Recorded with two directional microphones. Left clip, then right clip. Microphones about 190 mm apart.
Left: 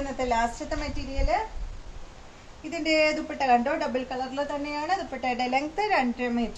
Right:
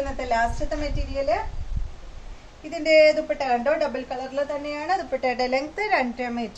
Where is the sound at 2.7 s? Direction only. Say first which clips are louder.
Right 7 dB; 15° right (ahead or behind); by 6.5 s 35° right (ahead or behind).